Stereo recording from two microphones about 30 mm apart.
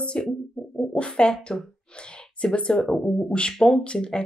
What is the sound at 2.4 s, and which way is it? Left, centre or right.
A woman's voice, left.